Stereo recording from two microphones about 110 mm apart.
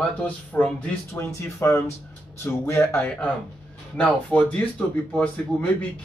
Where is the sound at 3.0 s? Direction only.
10° left (ahead or behind).